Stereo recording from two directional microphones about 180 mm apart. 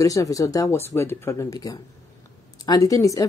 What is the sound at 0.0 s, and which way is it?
A woman's voice, 20° left (ahead or behind).